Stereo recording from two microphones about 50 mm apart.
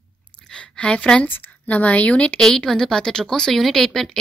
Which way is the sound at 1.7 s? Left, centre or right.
Left.